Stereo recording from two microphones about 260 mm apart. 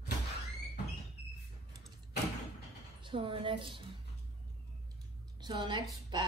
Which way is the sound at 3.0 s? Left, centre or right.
Centre.